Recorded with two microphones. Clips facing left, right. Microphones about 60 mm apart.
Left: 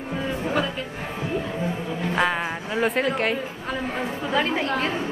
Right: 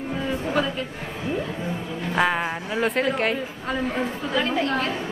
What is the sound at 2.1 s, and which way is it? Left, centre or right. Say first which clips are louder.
Speech: right 2 dB; centre.